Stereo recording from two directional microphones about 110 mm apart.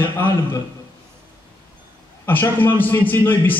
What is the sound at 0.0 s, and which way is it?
Speech, 20° left (ahead or behind).